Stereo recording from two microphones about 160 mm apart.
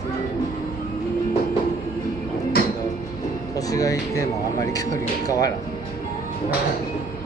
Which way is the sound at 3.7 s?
20° left (ahead or behind).